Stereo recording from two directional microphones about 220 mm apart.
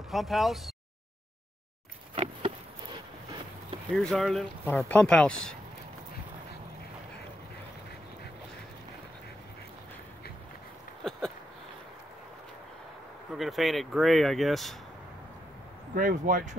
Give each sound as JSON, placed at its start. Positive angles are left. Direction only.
{"t": 0.1, "sound": "speech", "side_deg": 0}
{"t": 3.9, "sound": "speech", "side_deg": 5}
{"t": 11.1, "sound": "a sound", "side_deg": 0}
{"t": 13.3, "sound": "speech", "side_deg": 0}
{"t": 15.9, "sound": "speech", "side_deg": -40}